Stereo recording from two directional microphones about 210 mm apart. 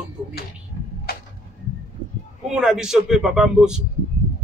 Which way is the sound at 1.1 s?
45° left (ahead or behind).